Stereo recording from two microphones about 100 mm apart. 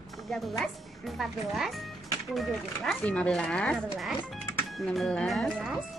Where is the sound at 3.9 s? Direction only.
Centre (ahead or behind).